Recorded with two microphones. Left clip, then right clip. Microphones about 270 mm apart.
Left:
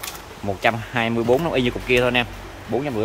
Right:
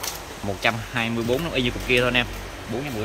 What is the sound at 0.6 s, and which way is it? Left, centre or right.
Speech, centre.